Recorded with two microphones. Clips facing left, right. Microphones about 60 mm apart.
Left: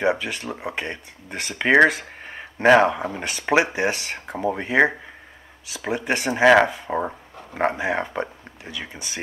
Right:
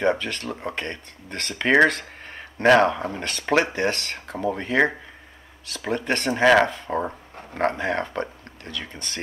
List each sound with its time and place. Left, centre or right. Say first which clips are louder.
0.0 s speech: even; centre